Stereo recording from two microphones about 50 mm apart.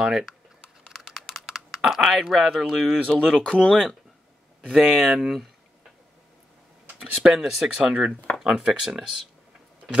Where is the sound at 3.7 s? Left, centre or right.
Centre.